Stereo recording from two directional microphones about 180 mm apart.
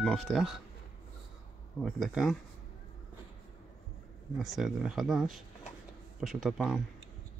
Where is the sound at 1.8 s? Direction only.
Centre (ahead or behind).